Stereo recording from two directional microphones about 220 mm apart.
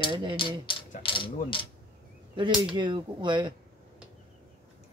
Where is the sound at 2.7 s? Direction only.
20° right (ahead or behind).